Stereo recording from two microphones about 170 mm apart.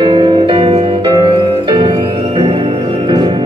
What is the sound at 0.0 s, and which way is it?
Music, 25° right (ahead or behind).